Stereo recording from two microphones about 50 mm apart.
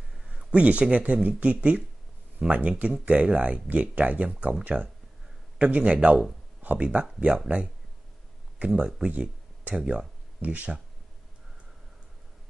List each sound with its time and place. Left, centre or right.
0.3 s speech: right
5.6 s speech: right